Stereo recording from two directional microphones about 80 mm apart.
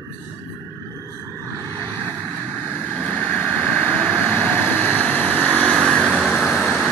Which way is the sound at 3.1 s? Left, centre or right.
Left.